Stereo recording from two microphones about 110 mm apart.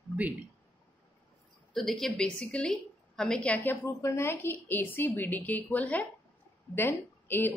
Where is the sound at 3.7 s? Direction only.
25° left (ahead or behind).